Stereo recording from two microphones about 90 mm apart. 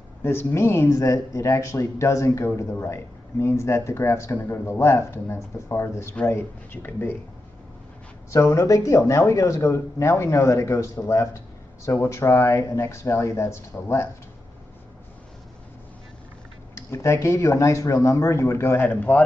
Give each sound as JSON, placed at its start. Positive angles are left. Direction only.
{"t": 0.2, "sound": "speech", "side_deg": 25}
{"t": 8.3, "sound": "speech", "side_deg": 35}
{"t": 16.7, "sound": "speech", "side_deg": 30}